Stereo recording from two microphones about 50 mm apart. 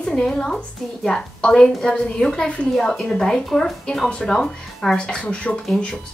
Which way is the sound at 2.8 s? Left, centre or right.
Centre.